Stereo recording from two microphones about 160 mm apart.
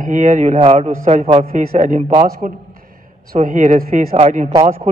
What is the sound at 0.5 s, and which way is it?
Speech, 40° right (ahead or behind).